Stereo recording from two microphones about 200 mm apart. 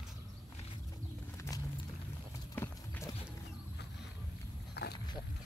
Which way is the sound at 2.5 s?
15° left (ahead or behind).